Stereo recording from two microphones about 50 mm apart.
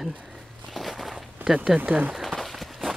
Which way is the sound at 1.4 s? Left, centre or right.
Centre.